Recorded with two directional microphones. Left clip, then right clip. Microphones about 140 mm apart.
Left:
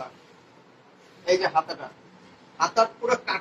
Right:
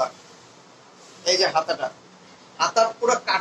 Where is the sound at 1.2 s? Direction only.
30° right (ahead or behind).